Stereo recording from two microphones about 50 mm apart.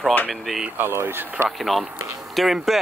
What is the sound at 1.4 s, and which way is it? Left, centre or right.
Speech, centre.